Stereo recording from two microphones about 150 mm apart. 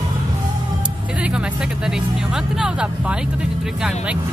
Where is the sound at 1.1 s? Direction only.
10° right (ahead or behind).